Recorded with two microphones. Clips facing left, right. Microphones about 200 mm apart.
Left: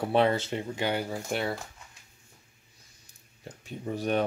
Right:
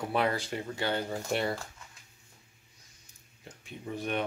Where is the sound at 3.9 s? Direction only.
40° left (ahead or behind).